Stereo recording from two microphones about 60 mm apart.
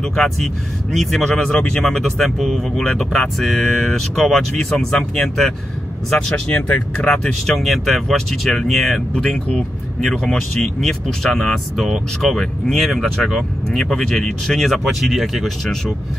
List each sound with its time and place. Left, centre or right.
0.0 s speech: centre
2.8 s speech: centre
3.1 s speech: centre
7.5 s speech: centre